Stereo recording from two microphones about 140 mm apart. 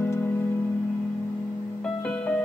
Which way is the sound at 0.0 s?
15° left (ahead or behind).